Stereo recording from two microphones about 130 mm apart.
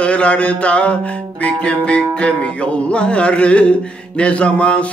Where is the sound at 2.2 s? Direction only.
10° left (ahead or behind).